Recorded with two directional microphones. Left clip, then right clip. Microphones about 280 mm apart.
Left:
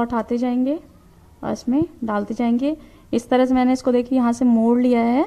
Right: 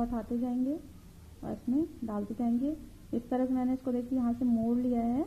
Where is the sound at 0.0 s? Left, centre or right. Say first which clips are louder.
Left 13 dB; left.